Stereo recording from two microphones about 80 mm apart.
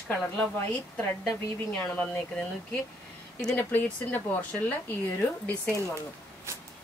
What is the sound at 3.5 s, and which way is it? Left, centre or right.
A woman's voice, left.